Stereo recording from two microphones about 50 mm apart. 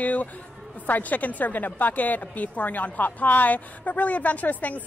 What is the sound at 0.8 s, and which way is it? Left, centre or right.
A woman's voice, left.